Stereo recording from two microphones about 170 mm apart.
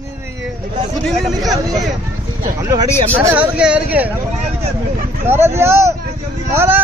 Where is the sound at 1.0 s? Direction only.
Centre (ahead or behind).